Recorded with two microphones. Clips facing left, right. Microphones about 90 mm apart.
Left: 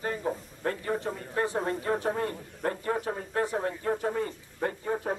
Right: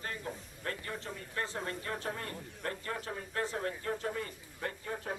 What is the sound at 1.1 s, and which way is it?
Speech, 45° left (ahead or behind).